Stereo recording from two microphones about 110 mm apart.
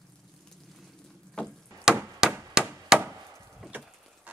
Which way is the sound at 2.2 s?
5° right (ahead or behind).